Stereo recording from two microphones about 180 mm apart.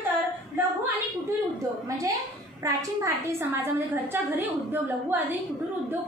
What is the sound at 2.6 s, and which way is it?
A woman's voice, 15° right (ahead or behind).